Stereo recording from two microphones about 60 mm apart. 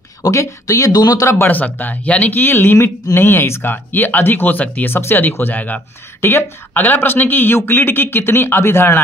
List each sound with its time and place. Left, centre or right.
0.2 s speech: left
1.5 s speech: left
2.3 s speech: left